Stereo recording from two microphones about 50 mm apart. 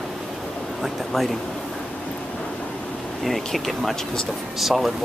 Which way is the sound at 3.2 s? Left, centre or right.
Centre.